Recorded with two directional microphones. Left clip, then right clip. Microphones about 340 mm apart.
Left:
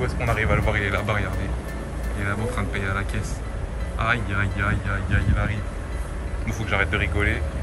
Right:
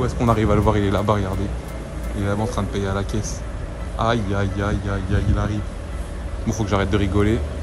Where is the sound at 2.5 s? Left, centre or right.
Centre.